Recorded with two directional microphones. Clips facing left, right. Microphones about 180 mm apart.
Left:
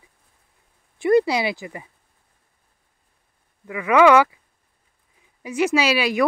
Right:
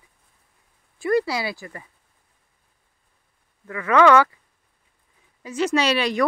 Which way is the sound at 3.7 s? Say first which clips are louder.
Left 1 dB; 15° left (ahead or behind).